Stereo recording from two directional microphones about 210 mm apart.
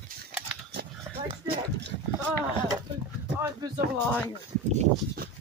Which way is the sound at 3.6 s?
20° right (ahead or behind).